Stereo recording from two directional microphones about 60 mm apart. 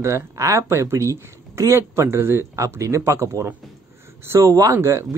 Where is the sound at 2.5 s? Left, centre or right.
Right.